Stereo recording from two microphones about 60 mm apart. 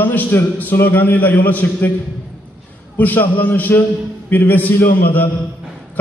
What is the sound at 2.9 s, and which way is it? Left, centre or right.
A man's voice, left.